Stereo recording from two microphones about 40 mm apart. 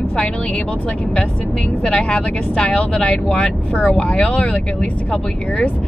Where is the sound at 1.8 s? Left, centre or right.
Left.